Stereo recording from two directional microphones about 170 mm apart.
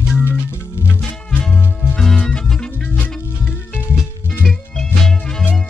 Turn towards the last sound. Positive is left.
turn(degrees=5)  # may be behind; listen again after turning